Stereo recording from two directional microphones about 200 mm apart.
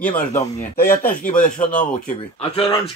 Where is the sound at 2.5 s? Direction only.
25° left (ahead or behind).